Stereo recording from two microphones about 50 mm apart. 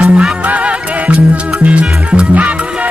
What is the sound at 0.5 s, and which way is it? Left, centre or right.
Music, right.